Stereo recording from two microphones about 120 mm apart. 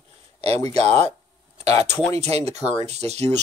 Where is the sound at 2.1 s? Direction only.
60° right (ahead or behind).